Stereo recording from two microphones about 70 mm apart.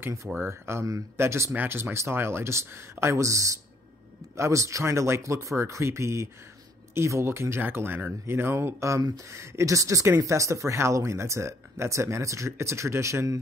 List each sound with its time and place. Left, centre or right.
0.0 s speech: right